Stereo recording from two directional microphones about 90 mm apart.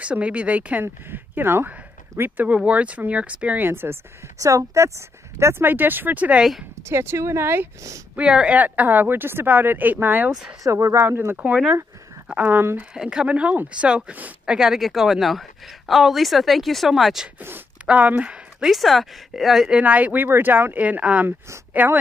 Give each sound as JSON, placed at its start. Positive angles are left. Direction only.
{"t": 0.0, "sound": "speech", "side_deg": -15}
{"t": 4.4, "sound": "speech", "side_deg": -35}
{"t": 6.7, "sound": "speech", "side_deg": -30}
{"t": 8.2, "sound": "speech", "side_deg": -10}
{"t": 10.6, "sound": "speech", "side_deg": -35}
{"t": 12.9, "sound": "speech", "side_deg": -10}
{"t": 17.4, "sound": "speech", "side_deg": -25}
{"t": 19.8, "sound": "speech", "side_deg": -15}